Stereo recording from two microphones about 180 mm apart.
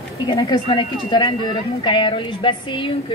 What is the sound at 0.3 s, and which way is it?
A man's voice, 25° left (ahead or behind).